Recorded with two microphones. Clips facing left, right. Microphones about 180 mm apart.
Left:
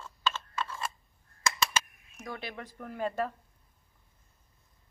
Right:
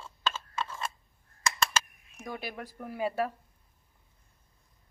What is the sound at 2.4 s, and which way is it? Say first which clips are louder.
Speech: right 2 dB; 5° right (ahead or behind).